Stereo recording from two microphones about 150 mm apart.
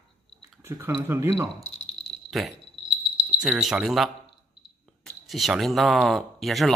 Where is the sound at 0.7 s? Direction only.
15° right (ahead or behind).